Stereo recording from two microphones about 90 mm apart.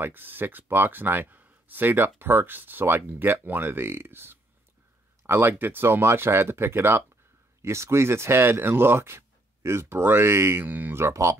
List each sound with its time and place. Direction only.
0.0 s speech: 20° right (ahead or behind)